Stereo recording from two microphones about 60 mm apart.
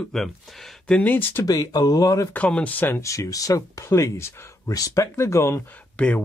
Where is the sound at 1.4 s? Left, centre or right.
Left.